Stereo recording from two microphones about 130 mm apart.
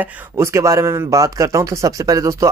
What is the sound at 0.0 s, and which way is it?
Speech, 20° right (ahead or behind).